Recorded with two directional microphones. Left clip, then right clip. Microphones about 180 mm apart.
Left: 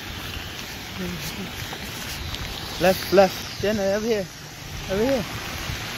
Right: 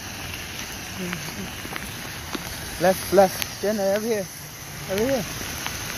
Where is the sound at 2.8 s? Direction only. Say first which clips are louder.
Even; 20° left (ahead or behind).